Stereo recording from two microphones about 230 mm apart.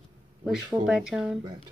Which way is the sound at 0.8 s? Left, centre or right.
Centre.